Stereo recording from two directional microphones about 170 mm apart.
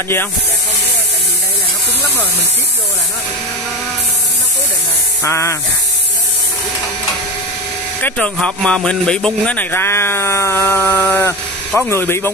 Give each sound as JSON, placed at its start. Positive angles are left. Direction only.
{"t": 5.2, "sound": "speech", "side_deg": 15}
{"t": 8.0, "sound": "speech", "side_deg": 5}